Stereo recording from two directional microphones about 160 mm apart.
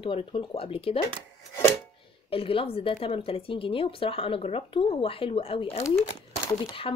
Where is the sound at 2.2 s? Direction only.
35° left (ahead or behind).